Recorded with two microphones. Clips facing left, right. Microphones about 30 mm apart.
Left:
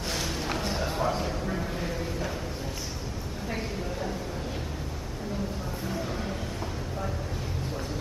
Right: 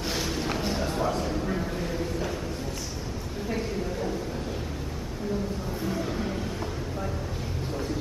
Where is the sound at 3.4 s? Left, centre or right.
Centre.